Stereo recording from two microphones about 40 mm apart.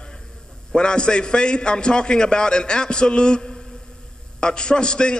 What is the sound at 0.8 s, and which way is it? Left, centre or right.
A man's voice, left.